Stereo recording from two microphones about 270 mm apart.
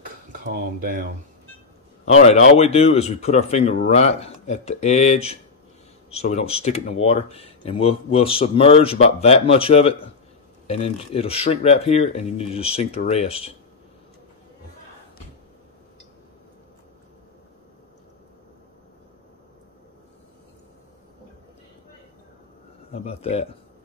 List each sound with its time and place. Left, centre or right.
0.3 s speech: right
2.0 s speech: left
22.8 s speech: left